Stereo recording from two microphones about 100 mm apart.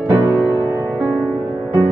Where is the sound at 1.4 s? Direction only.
15° right (ahead or behind).